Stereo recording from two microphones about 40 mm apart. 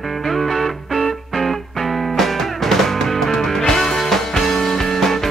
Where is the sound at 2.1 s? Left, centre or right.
Centre.